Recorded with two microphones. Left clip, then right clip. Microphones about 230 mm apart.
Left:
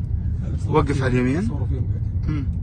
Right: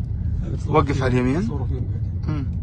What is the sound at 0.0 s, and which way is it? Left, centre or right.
Speech, centre.